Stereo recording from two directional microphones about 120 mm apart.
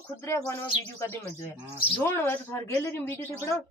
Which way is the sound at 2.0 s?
15° left (ahead or behind).